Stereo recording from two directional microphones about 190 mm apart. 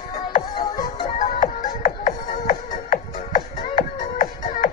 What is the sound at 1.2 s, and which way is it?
Music, 45° left (ahead or behind).